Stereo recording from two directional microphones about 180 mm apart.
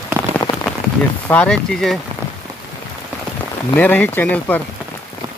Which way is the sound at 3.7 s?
10° left (ahead or behind).